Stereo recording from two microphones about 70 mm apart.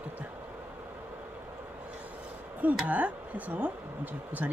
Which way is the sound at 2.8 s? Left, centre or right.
Right.